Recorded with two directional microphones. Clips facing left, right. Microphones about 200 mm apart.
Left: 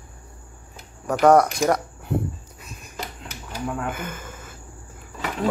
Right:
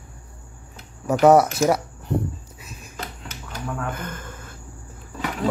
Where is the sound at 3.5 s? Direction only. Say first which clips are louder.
Left 2 dB; 10° left (ahead or behind).